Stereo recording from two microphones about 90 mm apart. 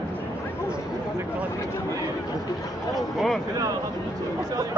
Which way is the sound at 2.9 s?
Centre (ahead or behind).